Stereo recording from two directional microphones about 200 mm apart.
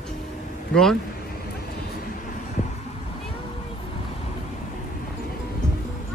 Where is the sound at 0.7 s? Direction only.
5° left (ahead or behind).